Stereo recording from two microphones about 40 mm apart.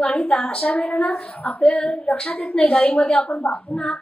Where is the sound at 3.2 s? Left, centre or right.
Left.